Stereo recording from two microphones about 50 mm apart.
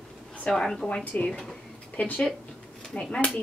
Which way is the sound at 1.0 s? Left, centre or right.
Left.